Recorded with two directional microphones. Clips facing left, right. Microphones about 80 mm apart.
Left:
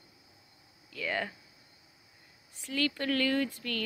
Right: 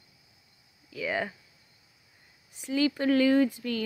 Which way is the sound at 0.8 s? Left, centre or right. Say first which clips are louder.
Right 3 dB; centre.